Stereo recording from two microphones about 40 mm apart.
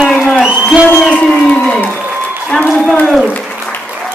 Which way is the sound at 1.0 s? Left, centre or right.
Left.